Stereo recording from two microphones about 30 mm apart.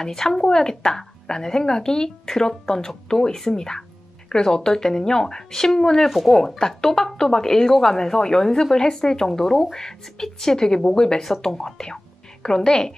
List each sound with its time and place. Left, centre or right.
0.0 s a woman's voice: centre
6.0 s speech: centre
6.3 s a woman's voice: centre